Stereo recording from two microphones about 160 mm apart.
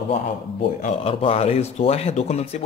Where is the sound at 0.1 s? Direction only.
45° left (ahead or behind).